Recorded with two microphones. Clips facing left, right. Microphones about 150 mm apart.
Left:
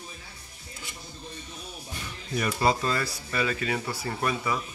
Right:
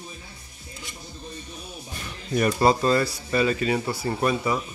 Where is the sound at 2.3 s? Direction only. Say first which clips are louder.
Right 5 dB; 45° right (ahead or behind).